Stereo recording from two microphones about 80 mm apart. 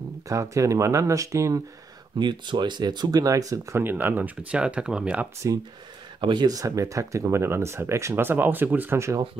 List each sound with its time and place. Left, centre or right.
0.3 s speech: right
2.1 s speech: right
3.7 s speech: right
6.2 s speech: right
6.5 s speech: right
8.9 s speech: right